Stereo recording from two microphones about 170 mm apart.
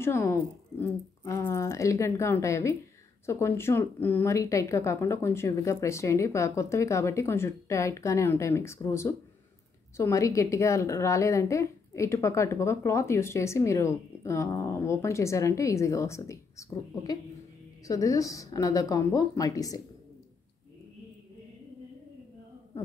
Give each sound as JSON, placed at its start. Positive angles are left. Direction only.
{"t": 0.0, "sound": "a woman's voice", "side_deg": 15}